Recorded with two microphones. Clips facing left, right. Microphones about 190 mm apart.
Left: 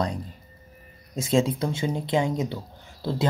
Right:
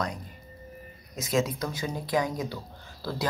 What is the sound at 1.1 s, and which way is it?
Speech, 30° left (ahead or behind).